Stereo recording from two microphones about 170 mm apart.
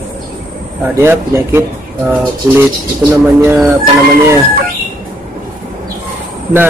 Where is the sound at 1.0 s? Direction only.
15° right (ahead or behind).